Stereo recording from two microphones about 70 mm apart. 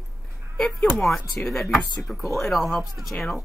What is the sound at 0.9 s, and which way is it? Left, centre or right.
Speech, centre.